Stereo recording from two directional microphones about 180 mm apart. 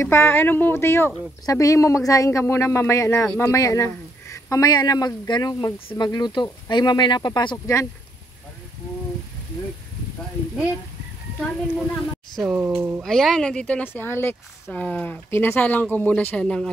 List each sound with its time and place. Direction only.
0.0 s a man's voice: 15° left (ahead or behind)
11.6 s speech: 5° left (ahead or behind); by 13.0 s 10° right (ahead or behind)
13.0 s speech: centre (ahead or behind)